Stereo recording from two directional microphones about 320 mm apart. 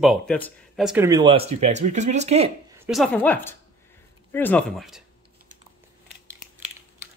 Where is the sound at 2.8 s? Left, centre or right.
Centre.